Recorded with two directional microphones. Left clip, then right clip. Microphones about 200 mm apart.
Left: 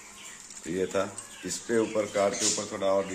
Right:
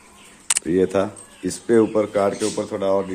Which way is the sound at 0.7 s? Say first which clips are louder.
Right 9 dB; 50° right (ahead or behind).